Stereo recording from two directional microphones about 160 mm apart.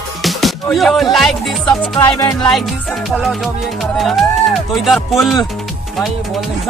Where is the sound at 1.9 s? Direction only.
20° left (ahead or behind).